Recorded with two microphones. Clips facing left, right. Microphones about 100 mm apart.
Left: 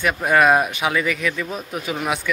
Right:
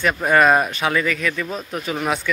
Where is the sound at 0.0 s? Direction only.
5° left (ahead or behind).